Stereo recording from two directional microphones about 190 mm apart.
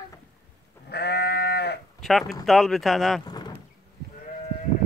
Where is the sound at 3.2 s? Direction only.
20° left (ahead or behind).